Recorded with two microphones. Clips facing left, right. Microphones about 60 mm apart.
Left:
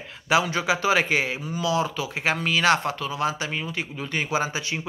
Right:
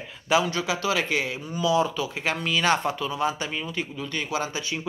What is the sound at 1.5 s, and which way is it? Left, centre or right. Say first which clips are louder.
A man's voice: right 5 dB; centre.